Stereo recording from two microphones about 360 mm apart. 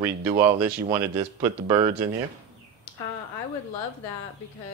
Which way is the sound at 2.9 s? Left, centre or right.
Centre.